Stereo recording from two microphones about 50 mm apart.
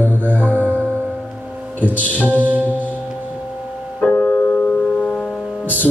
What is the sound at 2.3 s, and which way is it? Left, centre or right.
Mantra, right.